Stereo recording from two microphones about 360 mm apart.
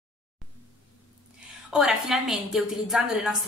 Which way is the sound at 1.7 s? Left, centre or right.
Centre.